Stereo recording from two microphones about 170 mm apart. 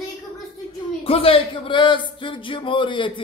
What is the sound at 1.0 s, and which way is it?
Speech, 35° left (ahead or behind).